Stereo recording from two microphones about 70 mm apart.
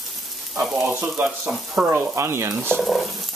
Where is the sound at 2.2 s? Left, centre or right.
Right.